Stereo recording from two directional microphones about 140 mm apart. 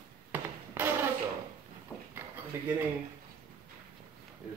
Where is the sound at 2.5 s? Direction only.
15° right (ahead or behind).